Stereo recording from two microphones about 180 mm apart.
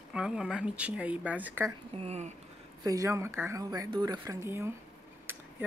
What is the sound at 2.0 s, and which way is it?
Speech, 35° right (ahead or behind).